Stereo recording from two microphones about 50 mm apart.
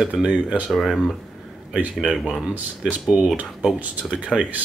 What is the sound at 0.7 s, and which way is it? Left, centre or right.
Speech, centre.